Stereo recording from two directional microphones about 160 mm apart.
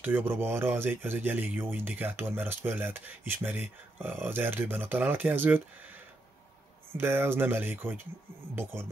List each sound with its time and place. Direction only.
0.0 s speech: 10° right (ahead or behind)
6.9 s speech: 15° right (ahead or behind)